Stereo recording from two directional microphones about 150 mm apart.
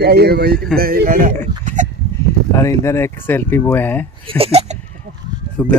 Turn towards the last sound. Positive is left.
turn(degrees=10)  # may be behind; listen again after turning